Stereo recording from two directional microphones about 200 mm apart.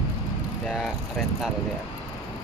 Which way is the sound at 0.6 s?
Centre (ahead or behind).